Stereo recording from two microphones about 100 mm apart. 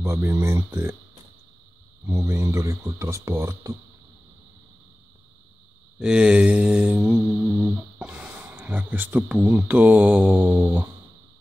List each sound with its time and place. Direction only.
0.0 s speech: 25° right (ahead or behind)
2.0 s speech: 25° right (ahead or behind)
5.9 s mantra: 10° right (ahead or behind)
8.0 s a sound: 15° right (ahead or behind)
10.3 s mantra: 15° right (ahead or behind)